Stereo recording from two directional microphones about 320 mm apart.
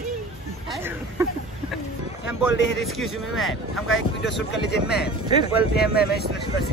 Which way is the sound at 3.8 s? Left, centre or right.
Left.